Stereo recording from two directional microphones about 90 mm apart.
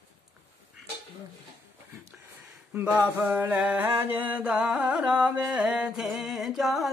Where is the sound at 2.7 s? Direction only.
15° right (ahead or behind).